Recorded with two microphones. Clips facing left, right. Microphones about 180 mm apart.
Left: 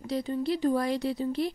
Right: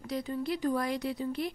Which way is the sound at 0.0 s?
30° left (ahead or behind).